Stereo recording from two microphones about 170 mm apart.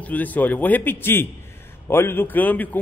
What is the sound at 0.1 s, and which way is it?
A man's voice, 10° left (ahead or behind).